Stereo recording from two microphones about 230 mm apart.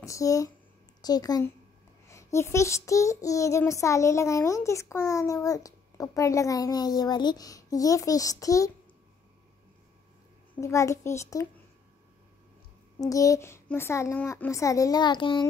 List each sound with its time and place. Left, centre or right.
0.0 s speech: centre
1.0 s child singing: centre
10.5 s child singing: centre
13.0 s child singing: centre